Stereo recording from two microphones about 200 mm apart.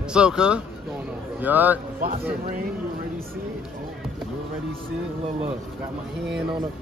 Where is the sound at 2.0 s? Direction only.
45° right (ahead or behind).